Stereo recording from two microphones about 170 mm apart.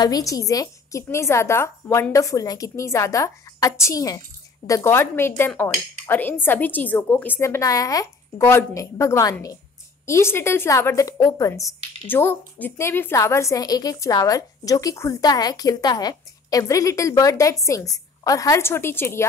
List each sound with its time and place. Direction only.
0.0 s speech: 20° left (ahead or behind)